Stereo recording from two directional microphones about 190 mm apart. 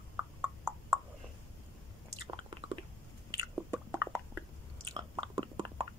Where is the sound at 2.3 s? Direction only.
25° right (ahead or behind).